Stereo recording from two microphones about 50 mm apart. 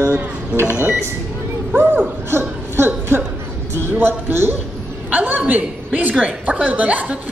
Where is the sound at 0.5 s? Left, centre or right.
Right.